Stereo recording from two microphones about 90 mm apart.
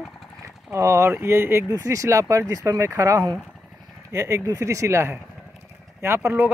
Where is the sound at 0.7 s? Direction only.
30° right (ahead or behind).